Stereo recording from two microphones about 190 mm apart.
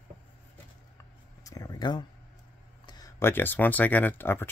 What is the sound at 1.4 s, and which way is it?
Speech, 15° left (ahead or behind).